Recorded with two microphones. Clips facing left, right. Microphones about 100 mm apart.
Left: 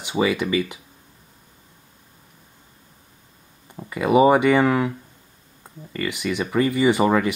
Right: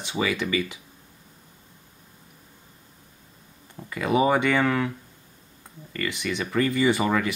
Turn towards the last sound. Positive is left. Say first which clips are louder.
# left 4 dB
turn(degrees=20)  # may be behind; listen again after turning